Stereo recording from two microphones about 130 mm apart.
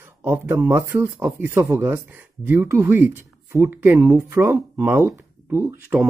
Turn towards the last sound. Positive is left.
turn(degrees=-15)  # may be behind; listen again after turning